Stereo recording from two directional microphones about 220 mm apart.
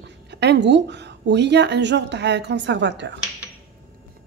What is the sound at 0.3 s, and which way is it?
A woman's voice, 50° right (ahead or behind).